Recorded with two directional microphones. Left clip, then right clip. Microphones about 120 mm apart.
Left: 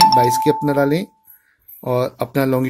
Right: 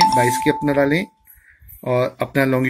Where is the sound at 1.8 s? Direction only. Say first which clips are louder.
Even; 25° left (ahead or behind).